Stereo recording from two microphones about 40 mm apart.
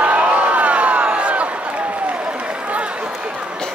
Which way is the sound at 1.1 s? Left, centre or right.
Right.